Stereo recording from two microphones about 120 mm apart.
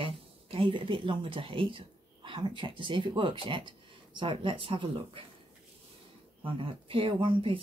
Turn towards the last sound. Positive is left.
turn(degrees=-45)  # may be behind; listen again after turning